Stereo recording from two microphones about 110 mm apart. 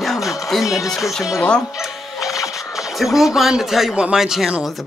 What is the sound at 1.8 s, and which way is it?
Music, centre (ahead or behind).